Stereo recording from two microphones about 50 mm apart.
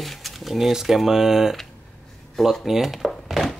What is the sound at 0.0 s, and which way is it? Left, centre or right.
Speech, centre.